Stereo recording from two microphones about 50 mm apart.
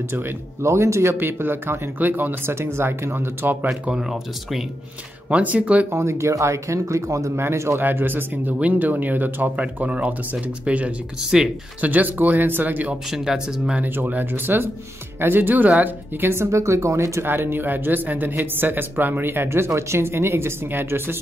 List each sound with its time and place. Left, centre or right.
0.1 s speech: right
3.4 s speech: right
3.9 s speech: centre
5.3 s speech: right
5.9 s speech: right
7.8 s speech: right
8.5 s speech: right
13.1 s speech: centre
13.8 s speech: right
16.3 s speech: right
17.3 s speech: right